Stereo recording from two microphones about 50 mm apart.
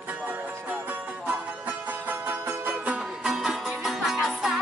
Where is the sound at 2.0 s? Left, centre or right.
Right.